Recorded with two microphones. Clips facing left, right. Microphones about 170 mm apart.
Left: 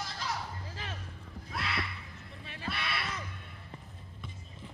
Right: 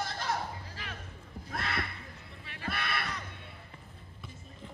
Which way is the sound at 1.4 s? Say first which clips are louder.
Right 1 dB; 50° right (ahead or behind).